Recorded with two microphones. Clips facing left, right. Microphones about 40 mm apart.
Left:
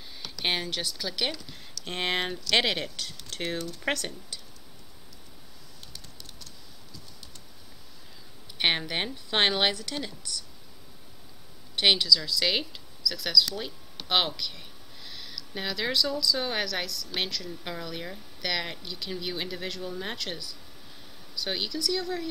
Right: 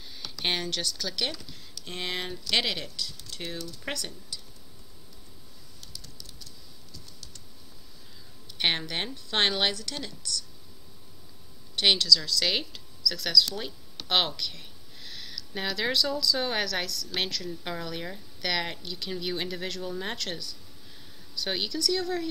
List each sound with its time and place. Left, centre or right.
0.0 s speech: centre
1.5 s speech: left
5.9 s pigeon: left
8.5 s speech: centre
11.7 s speech: centre